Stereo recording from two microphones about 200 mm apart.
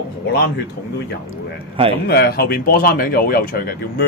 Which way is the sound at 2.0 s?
50° left (ahead or behind).